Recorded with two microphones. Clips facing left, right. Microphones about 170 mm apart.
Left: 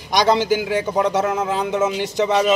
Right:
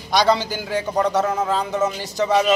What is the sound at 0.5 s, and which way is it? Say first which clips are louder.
Speech: left 2 dB; 10° left (ahead or behind).